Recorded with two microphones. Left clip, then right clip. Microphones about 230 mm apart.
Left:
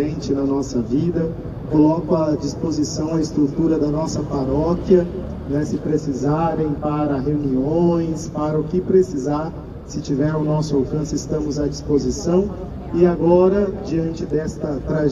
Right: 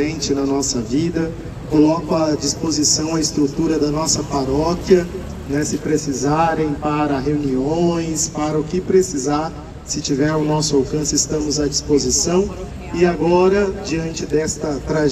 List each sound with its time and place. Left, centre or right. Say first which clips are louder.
0.0 s a man's voice: right 2 dB; right